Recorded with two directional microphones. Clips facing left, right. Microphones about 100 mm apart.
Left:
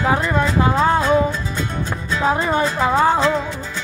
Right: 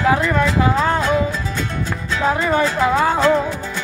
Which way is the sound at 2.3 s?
25° left (ahead or behind).